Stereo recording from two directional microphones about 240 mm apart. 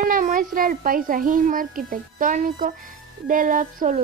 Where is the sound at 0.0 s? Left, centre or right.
Right.